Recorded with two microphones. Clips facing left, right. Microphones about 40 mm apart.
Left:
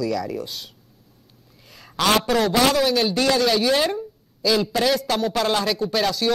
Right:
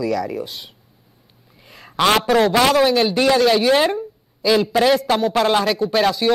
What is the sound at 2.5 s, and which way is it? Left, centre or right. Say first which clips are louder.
A man's voice: right 4 dB; right.